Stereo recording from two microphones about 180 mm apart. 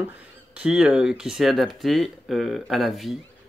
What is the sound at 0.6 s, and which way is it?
Speech, 5° right (ahead or behind).